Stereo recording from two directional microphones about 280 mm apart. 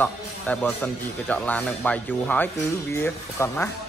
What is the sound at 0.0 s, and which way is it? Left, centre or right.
Speech, centre.